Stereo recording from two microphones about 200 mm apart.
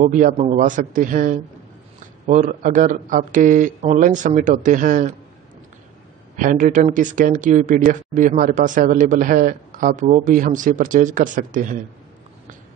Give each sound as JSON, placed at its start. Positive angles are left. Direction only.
{"t": 0.0, "sound": "speech", "side_deg": -40}
{"t": 6.3, "sound": "speech", "side_deg": -40}